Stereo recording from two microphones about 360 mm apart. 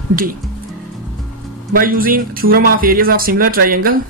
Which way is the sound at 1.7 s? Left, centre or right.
Right.